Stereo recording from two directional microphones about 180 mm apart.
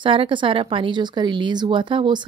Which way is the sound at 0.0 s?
30° right (ahead or behind).